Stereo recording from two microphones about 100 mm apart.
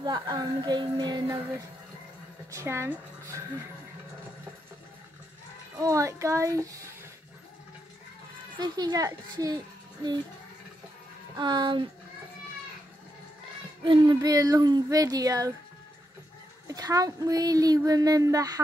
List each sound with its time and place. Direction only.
0.0 s a woman's voice: 45° right (ahead or behind)
2.5 s speech: 25° right (ahead or behind)
5.8 s speech: 30° right (ahead or behind)
8.5 s speech: 45° right (ahead or behind)
11.3 s a woman's voice: 50° right (ahead or behind)
13.8 s speech: 55° right (ahead or behind)
14.2 s speech: 35° right (ahead or behind)
16.6 s speech: 35° right (ahead or behind)